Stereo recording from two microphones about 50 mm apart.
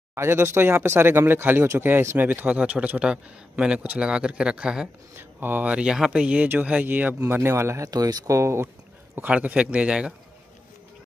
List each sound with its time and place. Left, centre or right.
0.1 s a man's voice: right; by 4.8 s centre
5.1 s speech: right
5.7 s a man's voice: centre
6.9 s speech: right
9.2 s a man's voice: right